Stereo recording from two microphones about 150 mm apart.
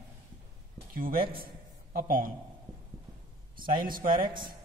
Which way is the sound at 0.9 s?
70° right (ahead or behind).